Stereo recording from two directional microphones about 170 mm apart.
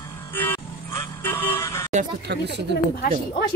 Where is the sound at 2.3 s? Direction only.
85° right.